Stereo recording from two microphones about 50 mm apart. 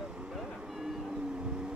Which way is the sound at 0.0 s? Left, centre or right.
Centre.